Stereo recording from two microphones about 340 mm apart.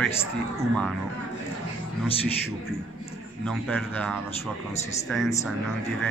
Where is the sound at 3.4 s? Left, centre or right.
Centre.